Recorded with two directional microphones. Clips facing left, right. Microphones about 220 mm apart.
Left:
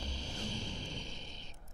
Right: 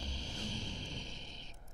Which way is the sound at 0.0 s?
60° left (ahead or behind).